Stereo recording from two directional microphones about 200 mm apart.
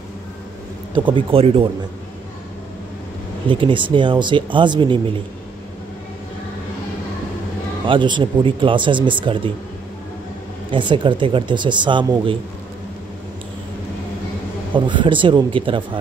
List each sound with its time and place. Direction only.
0.9 s speech: 25° right (ahead or behind)
3.4 s speech: 25° right (ahead or behind)
7.8 s speech: 25° right (ahead or behind)
10.7 s speech: 25° right (ahead or behind)
14.7 s speech: 25° right (ahead or behind)